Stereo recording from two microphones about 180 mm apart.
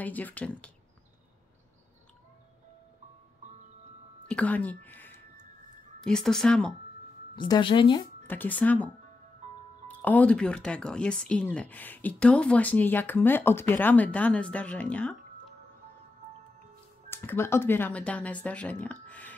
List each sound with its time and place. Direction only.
0.0 s speech: 10° left (ahead or behind)
4.3 s speech: 5° left (ahead or behind)
7.3 s speech: 25° left (ahead or behind)
8.3 s speech: 10° left (ahead or behind)
17.1 s speech: 15° left (ahead or behind)